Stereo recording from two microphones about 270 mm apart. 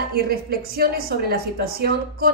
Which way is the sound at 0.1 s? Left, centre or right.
Right.